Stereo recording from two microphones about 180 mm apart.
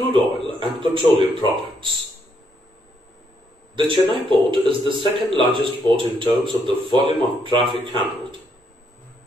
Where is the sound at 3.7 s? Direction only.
25° right (ahead or behind).